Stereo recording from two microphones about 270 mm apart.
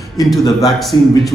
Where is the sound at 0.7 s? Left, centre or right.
Centre.